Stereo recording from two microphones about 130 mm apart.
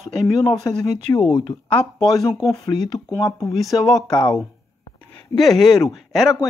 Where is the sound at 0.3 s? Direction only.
30° left (ahead or behind).